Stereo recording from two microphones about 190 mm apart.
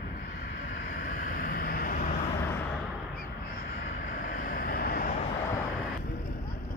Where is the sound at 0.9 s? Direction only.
45° left (ahead or behind).